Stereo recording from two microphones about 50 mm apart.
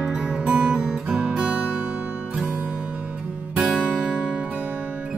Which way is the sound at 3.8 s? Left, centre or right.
Centre.